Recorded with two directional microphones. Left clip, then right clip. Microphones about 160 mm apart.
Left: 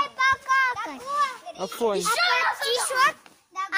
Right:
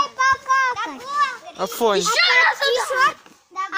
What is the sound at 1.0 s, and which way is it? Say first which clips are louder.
Children playing: right 3 dB; 65° left (ahead or behind).